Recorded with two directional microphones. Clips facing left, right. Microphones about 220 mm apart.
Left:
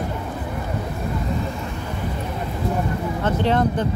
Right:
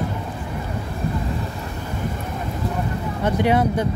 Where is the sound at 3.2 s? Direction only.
10° right (ahead or behind).